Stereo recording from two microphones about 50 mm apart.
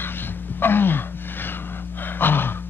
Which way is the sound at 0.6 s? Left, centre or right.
Left.